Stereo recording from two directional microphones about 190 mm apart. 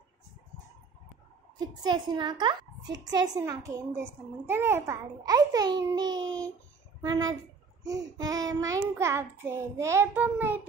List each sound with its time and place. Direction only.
1.7 s a child's voice: 20° right (ahead or behind)